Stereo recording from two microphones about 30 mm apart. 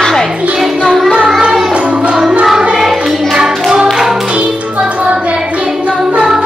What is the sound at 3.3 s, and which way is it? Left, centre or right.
Clapping, centre.